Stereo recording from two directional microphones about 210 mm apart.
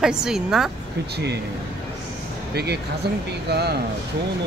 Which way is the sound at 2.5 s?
50° right (ahead or behind).